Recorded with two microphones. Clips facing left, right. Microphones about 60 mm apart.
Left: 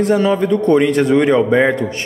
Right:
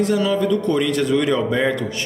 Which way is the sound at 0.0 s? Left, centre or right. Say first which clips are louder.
Left 4 dB; left.